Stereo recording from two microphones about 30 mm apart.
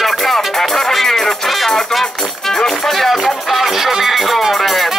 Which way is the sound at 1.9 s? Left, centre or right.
Centre.